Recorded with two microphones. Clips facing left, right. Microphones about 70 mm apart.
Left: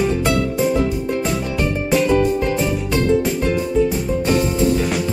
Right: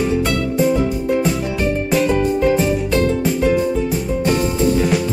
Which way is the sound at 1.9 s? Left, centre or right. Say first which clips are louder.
Left 2 dB; centre.